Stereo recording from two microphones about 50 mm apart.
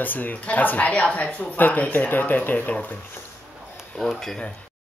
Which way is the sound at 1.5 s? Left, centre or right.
Left.